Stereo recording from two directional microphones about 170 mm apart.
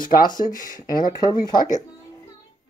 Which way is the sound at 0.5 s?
55° left (ahead or behind).